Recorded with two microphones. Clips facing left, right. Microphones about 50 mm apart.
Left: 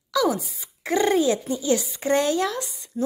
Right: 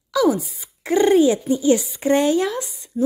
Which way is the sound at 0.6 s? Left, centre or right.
Centre.